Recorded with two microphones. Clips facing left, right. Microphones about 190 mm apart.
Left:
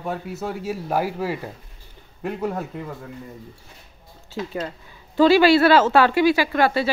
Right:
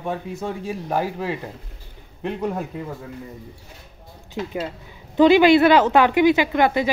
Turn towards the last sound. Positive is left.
turn(degrees=-15)  # may be behind; listen again after turning